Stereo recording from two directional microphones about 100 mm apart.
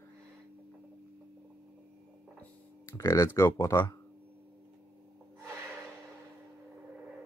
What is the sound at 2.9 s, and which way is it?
Speech, 30° left (ahead or behind).